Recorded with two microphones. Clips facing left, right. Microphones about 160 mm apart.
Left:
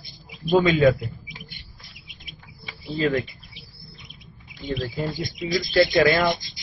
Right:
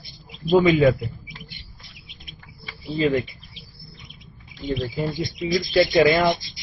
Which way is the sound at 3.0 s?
20° right (ahead or behind).